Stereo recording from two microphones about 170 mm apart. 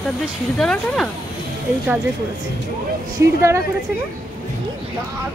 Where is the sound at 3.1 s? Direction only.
15° right (ahead or behind).